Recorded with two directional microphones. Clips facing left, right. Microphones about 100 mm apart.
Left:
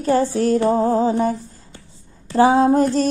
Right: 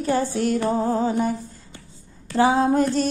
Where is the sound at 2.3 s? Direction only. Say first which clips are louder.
Left 4 dB; 35° left (ahead or behind).